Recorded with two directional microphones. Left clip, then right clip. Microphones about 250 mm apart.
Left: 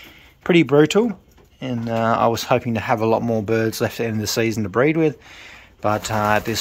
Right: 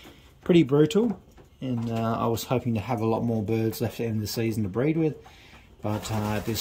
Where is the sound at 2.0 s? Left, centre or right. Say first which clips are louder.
Left 10 dB; centre.